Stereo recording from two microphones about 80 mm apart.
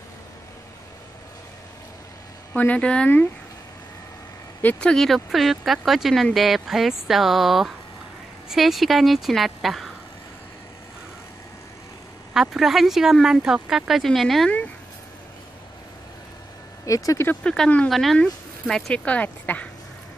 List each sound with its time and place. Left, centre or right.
2.5 s speech: centre
4.6 s speech: left
4.8 s speech: centre
12.4 s speech: centre
16.8 s speech: left
17.4 s speech: centre
17.8 s speech: centre; by 19.7 s left